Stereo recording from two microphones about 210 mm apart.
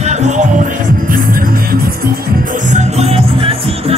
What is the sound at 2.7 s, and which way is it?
Music, 30° right (ahead or behind).